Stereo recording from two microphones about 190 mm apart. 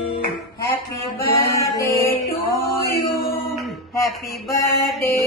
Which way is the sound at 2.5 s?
55° left (ahead or behind).